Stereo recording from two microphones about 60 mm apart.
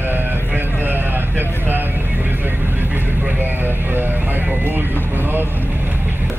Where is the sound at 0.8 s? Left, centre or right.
Right.